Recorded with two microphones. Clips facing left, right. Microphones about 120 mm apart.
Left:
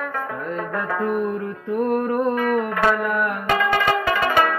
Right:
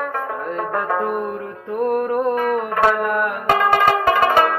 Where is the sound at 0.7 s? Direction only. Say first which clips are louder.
Right 3 dB; 25° right (ahead or behind).